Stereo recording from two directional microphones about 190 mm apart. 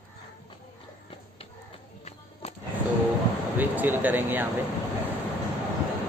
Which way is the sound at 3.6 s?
10° right (ahead or behind).